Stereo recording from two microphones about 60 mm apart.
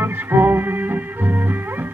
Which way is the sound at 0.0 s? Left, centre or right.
Right.